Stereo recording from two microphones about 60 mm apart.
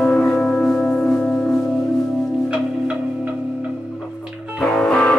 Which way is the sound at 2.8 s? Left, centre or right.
Centre.